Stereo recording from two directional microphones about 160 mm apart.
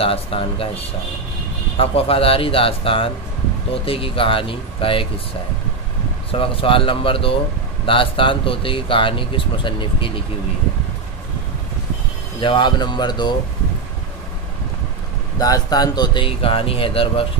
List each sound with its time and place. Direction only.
0.0 s speech: 35° left (ahead or behind)
6.3 s speech: 35° left (ahead or behind)
12.4 s speech: 30° left (ahead or behind)
15.3 s speech: 25° left (ahead or behind)